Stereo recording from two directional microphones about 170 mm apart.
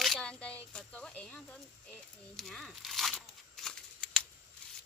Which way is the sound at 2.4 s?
Centre (ahead or behind).